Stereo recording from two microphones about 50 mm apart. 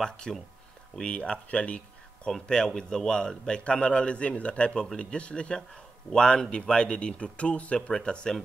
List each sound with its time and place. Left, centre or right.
0.0 s a man's voice: centre